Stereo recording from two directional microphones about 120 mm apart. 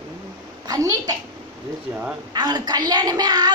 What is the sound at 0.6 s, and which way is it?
Speech, 30° right (ahead or behind).